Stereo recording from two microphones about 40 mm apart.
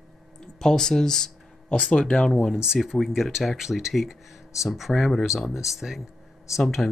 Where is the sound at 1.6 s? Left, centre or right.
Left.